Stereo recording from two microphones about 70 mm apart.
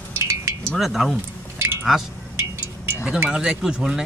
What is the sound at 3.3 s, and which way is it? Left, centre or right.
Speech, centre.